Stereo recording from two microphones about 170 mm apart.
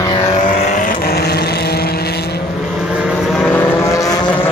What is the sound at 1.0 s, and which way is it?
Vehicle, 70° left (ahead or behind).